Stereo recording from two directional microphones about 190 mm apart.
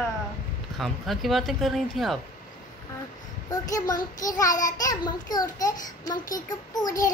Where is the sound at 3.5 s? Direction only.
20° left (ahead or behind).